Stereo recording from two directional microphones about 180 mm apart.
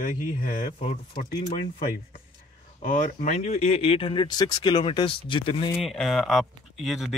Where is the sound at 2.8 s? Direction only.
50° left (ahead or behind); by 5.7 s 30° left (ahead or behind).